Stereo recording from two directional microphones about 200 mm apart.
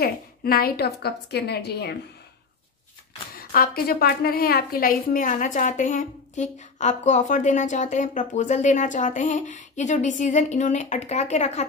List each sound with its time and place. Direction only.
0.0 s a woman's voice: 50° left (ahead or behind)
3.3 s a woman's voice: 50° left (ahead or behind)